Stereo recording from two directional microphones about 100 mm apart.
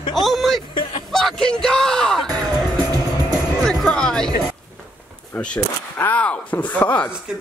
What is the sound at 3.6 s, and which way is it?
Music, 10° left (ahead or behind).